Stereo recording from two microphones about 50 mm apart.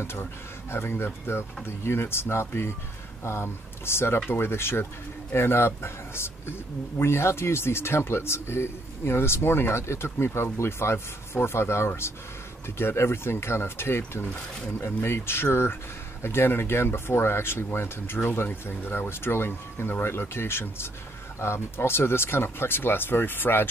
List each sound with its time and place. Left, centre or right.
0.0 s speech: left